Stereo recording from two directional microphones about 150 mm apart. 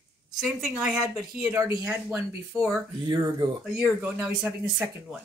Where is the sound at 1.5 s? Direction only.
20° right (ahead or behind).